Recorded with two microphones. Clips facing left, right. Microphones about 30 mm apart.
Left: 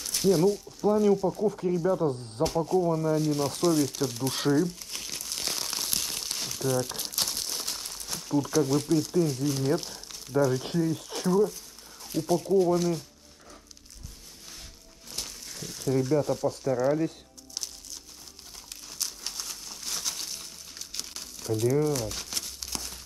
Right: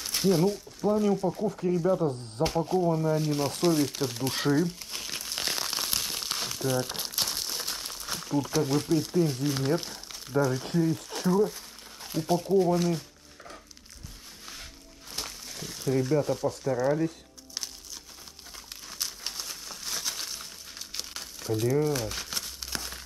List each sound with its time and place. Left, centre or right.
0.2 s speech: centre
2.4 s speech: right
3.6 s speech: right
4.9 s crumpling: centre
7.2 s crumpling: centre
7.8 s crumpling: centre
8.3 s speech: centre
9.2 s speech: right
9.7 s speech: centre
15.1 s crumpling: centre
16.6 s speech: centre
18.9 s crumpling: centre